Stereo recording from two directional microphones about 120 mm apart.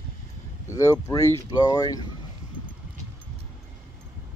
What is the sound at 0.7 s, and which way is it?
Speech, 25° left (ahead or behind).